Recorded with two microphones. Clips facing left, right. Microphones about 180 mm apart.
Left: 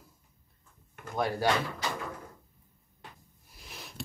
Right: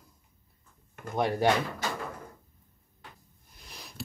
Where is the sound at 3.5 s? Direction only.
Centre (ahead or behind).